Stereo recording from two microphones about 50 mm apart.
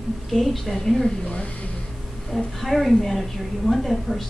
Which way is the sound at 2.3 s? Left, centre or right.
Centre.